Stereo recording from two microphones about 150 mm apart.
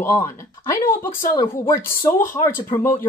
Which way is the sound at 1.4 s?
25° left (ahead or behind).